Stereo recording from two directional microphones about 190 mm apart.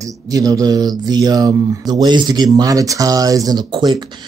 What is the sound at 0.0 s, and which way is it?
Speech, 20° right (ahead or behind).